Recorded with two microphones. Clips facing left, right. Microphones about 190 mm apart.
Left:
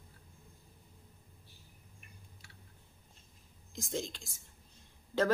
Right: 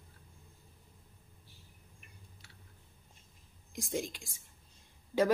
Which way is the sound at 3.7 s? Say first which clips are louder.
Right 2 dB; 10° right (ahead or behind).